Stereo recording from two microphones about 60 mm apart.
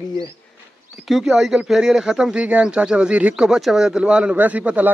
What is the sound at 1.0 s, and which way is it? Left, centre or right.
Speech, centre.